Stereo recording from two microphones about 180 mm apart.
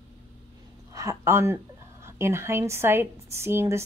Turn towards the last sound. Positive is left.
turn(degrees=-15)  # may be behind; listen again after turning